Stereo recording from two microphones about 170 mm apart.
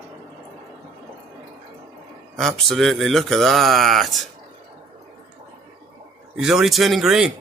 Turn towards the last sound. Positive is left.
turn(degrees=-5)  # may be behind; listen again after turning